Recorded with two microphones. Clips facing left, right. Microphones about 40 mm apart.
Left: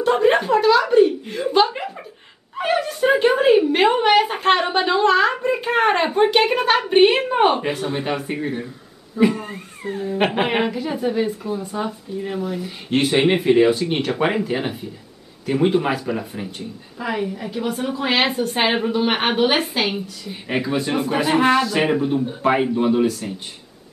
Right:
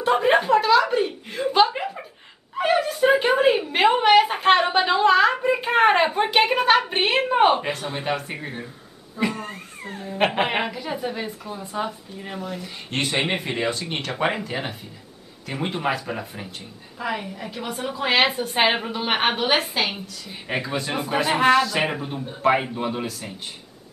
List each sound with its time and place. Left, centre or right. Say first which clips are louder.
0.0 s chuckle: left 2 dB; centre
2.5 s a sound: even; centre
9.1 s a woman's voice: left 7 dB; centre